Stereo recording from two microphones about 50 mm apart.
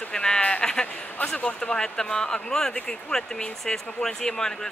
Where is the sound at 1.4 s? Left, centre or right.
Left.